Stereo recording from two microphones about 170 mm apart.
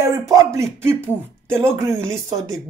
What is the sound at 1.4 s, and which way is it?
Speech, 15° right (ahead or behind).